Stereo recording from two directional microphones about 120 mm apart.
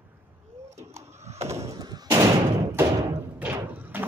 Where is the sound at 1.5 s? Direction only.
25° right (ahead or behind).